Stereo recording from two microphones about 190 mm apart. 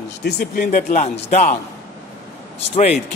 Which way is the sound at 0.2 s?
55° left (ahead or behind).